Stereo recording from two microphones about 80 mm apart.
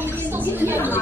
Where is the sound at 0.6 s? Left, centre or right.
Right.